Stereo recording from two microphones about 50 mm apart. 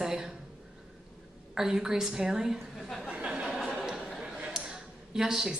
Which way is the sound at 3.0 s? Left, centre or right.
Right.